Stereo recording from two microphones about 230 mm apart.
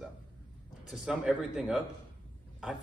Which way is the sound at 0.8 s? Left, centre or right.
Centre.